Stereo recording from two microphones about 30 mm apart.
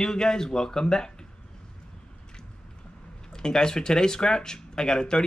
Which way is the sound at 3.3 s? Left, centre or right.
Left.